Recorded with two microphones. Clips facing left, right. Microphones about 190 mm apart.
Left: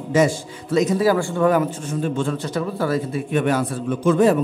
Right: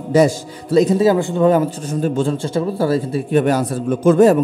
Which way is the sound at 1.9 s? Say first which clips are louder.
Right 4 dB; 40° right (ahead or behind).